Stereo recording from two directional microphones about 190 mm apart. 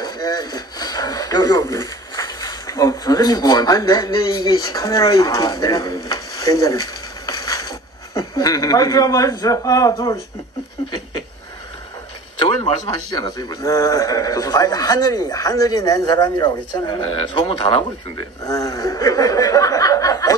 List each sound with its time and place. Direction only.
0.0 s speech: 20° left (ahead or behind)
12.4 s a man's voice: 25° left (ahead or behind)